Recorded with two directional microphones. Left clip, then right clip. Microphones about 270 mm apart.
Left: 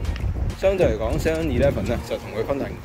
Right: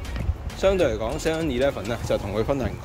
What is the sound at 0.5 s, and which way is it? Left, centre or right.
Speech, centre.